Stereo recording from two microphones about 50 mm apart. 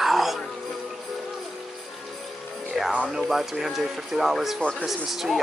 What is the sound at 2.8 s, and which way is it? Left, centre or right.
Music, centre.